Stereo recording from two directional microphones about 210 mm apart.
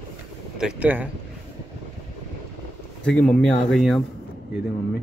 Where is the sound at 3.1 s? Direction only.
5° left (ahead or behind).